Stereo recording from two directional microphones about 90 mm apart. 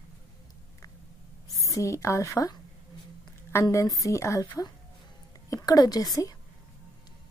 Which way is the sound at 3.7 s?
35° left (ahead or behind).